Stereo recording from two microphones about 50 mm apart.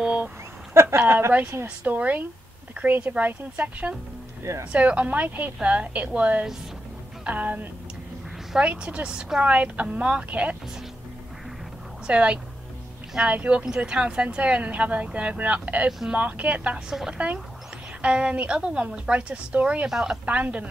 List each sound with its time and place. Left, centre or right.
0.0 s a sound: centre
0.7 s speech: right
1.9 s speech: right
5.6 s speech: right
8.6 s speech: right
12.1 s speech: right
19.9 s speech: centre
20.2 s speech: right